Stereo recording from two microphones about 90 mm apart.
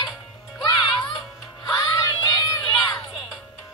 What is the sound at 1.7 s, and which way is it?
Crowd, 55° left (ahead or behind).